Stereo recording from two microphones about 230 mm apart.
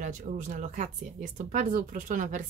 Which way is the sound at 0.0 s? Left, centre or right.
Right.